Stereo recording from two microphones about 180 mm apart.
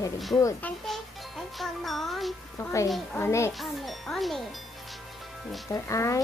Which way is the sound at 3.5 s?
Centre (ahead or behind).